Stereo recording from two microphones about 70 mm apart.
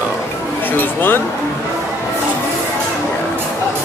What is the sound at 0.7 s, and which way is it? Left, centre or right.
Speech, left.